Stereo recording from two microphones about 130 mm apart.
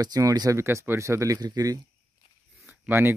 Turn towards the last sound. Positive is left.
turn(degrees=-15)  # may be behind; listen again after turning